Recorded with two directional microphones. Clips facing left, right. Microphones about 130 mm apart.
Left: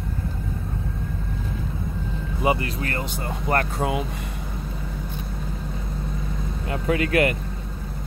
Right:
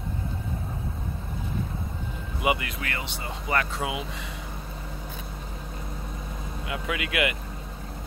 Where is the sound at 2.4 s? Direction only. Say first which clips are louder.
Left 4 dB; 35° left (ahead or behind).